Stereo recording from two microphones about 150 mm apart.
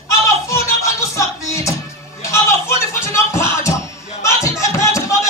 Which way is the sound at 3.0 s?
20° left (ahead or behind).